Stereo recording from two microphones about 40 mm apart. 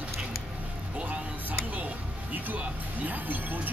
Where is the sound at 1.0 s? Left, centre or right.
Right.